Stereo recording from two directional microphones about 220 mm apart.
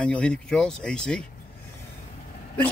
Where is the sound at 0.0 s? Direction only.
5° left (ahead or behind).